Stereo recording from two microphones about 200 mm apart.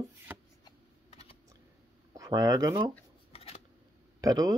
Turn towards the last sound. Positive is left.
turn(degrees=-20)  # may be behind; listen again after turning